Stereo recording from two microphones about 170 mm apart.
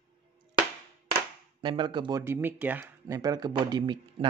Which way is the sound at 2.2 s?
10° right (ahead or behind).